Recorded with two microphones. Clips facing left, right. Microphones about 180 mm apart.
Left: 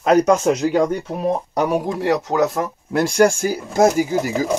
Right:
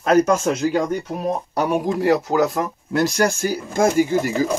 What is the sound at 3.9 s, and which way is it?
Speech, 5° left (ahead or behind).